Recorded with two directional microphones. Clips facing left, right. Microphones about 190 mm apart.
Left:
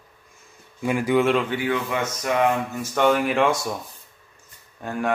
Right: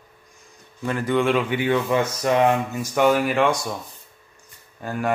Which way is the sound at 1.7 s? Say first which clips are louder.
Right 4 dB; 35° right (ahead or behind).